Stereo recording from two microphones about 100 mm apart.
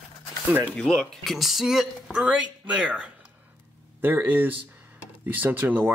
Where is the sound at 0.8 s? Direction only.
5° left (ahead or behind).